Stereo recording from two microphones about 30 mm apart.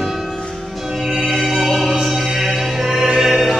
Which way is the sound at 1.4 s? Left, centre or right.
Centre.